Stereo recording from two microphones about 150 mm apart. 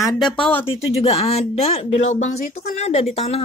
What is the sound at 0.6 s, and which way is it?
Speech, 40° left (ahead or behind).